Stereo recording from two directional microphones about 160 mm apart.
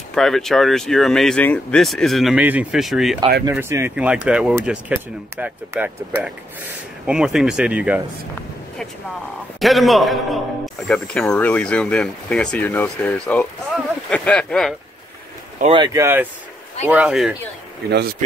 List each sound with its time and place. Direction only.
0.1 s speech: centre (ahead or behind)
3.5 s speech: 15° right (ahead or behind)
7.1 s speech: 5° right (ahead or behind)
9.6 s speech: centre (ahead or behind)
15.7 s speech: 25° right (ahead or behind)
16.9 s speech: 5° right (ahead or behind)
17.8 s speech: 90° right